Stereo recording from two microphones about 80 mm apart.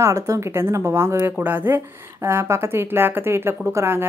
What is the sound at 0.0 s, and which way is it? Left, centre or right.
Speech, right.